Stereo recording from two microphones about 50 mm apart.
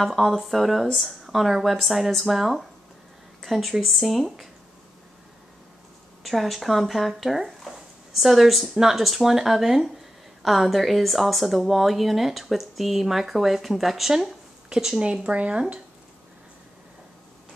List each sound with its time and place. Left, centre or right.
0.0 s speech: centre
6.2 s speech: centre
15.2 s speech: right